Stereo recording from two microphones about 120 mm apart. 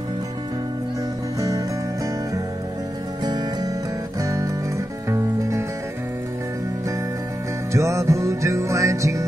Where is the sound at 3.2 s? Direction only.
35° right (ahead or behind).